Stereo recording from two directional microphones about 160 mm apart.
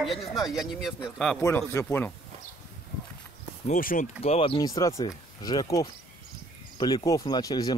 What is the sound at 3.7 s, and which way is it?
Speech, 55° left (ahead or behind).